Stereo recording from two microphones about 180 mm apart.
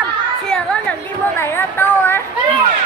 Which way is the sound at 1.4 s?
10° left (ahead or behind).